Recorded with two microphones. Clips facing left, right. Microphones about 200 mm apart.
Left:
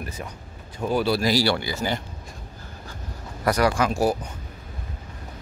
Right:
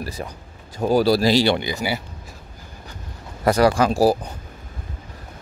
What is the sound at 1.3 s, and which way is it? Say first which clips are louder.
Speech: right 4 dB; 20° right (ahead or behind).